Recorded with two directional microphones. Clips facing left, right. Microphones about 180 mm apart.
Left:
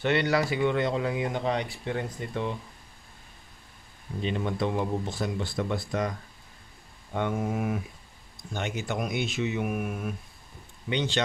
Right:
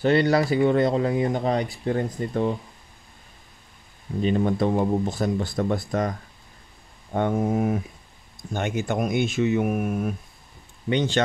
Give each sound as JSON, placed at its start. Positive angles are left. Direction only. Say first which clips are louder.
{"t": 0.0, "sound": "speech", "louder": "right 5 dB", "side_deg": -35}
{"t": 4.2, "sound": "speech", "louder": "right 7 dB", "side_deg": -40}
{"t": 8.4, "sound": "speech", "louder": "right 6 dB", "side_deg": -50}